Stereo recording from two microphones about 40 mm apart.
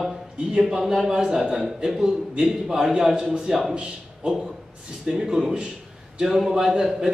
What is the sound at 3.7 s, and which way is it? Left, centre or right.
Speech, right.